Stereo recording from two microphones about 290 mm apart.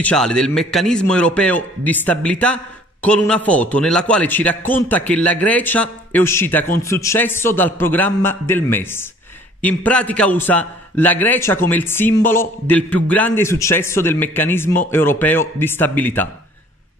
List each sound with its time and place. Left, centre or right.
0.0 s a man's voice: centre